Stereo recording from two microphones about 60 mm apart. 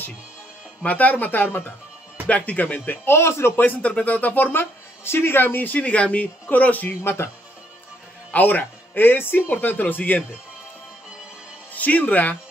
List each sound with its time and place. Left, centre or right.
0.8 s speech: left
3.1 s speech: left
3.6 s speech: left
7.0 s speech: left
8.3 s speech: left
11.7 s speech: left